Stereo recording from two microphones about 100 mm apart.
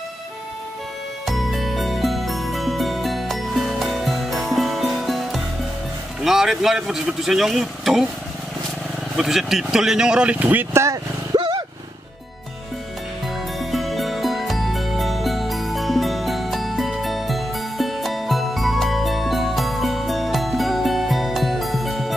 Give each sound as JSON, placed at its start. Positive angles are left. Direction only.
{"t": 1.2, "sound": "music", "side_deg": 0}
{"t": 6.2, "sound": "speech", "side_deg": -5}
{"t": 9.1, "sound": "speech", "side_deg": -5}
{"t": 11.3, "sound": "a sound", "side_deg": -50}
{"t": 13.6, "sound": "music", "side_deg": 0}